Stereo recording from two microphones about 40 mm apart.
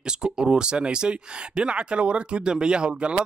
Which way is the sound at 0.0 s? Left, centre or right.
Right.